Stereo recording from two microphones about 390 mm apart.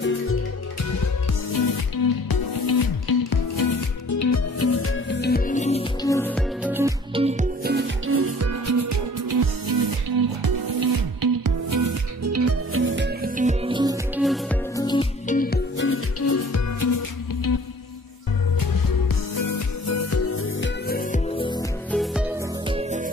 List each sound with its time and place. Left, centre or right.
2.2 s music: left
4.1 s music: left
19.4 s music: left; by 21.6 s centre
21.9 s music: centre
22.7 s music: centre